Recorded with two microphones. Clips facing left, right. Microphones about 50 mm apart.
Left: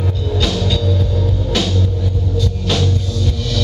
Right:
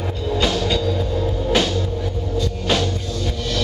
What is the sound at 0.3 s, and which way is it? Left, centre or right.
Music, centre.